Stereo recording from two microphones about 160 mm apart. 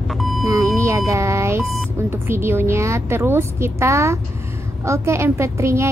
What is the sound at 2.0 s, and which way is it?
A woman's voice, 15° right (ahead or behind).